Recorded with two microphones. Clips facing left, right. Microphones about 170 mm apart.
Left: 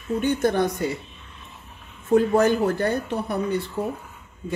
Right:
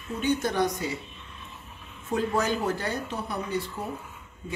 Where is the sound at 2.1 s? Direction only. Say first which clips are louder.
Left 8 dB; 55° left (ahead or behind).